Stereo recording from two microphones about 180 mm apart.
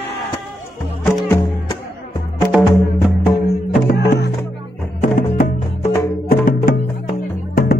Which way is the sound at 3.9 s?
70° left (ahead or behind).